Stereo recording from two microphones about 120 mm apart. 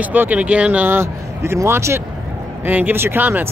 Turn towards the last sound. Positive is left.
turn(degrees=-15)  # may be behind; listen again after turning